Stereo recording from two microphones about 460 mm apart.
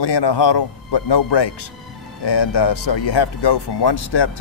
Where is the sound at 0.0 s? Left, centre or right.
Left.